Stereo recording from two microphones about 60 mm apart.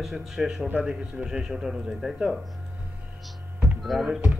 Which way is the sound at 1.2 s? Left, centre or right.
Centre.